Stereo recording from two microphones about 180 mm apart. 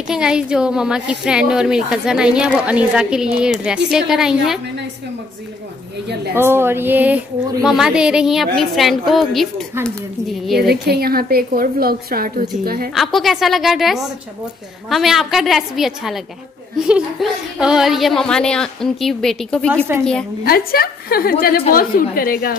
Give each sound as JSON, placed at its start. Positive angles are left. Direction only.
{"t": 0.1, "sound": "speech", "side_deg": -5}
{"t": 6.3, "sound": "speech", "side_deg": -15}
{"t": 10.7, "sound": "a woman's voice", "side_deg": -60}
{"t": 12.9, "sound": "speech", "side_deg": 0}
{"t": 20.4, "sound": "a woman's voice", "side_deg": 60}